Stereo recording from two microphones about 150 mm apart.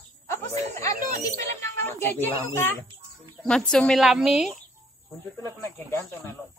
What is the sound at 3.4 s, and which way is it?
A woman's voice, 5° left (ahead or behind).